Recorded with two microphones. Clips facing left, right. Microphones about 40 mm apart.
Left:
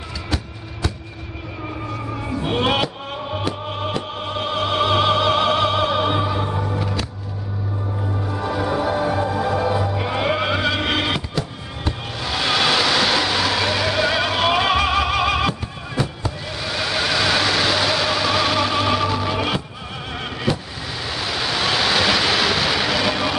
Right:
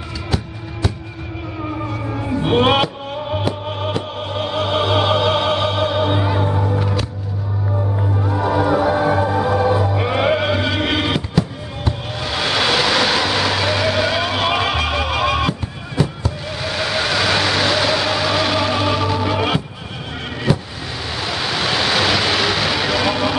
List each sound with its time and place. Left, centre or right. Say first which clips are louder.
1.9 s music: right 4 dB; centre
3.4 s opera: right 3 dB; centre
6.2 s music: right 3 dB; centre
8.2 s music: right 6 dB; centre
10.4 s music: right 1 dB; centre
10.8 s fireworks: right 2 dB; centre
21.1 s vehicle: right 1 dB; centre